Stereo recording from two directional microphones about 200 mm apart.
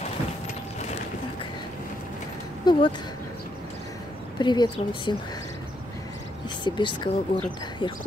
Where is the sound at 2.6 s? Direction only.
20° left (ahead or behind).